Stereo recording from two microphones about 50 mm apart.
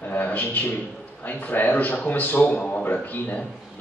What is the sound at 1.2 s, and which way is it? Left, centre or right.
A man's voice, left.